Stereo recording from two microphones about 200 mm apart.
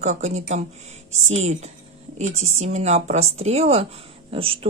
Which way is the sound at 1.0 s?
85° right.